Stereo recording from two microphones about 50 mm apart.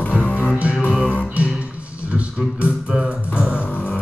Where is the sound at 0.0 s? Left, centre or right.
Left.